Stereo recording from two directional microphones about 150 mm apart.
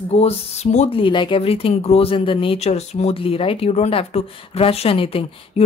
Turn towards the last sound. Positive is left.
turn(degrees=40)  # may be behind; listen again after turning